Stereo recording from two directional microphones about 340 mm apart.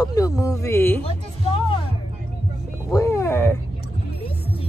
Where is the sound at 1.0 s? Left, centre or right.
Centre.